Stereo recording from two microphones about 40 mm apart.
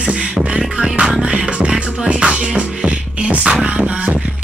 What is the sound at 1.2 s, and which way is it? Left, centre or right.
Music, right.